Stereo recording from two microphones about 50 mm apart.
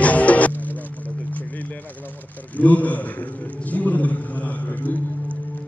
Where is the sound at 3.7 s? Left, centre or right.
Left.